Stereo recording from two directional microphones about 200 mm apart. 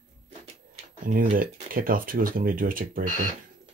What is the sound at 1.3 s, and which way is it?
Speech, 45° right (ahead or behind).